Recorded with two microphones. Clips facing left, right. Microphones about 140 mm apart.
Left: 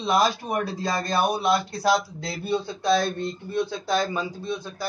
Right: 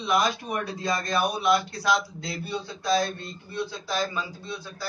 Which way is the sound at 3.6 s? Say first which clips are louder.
Left 3 dB; 50° left (ahead or behind).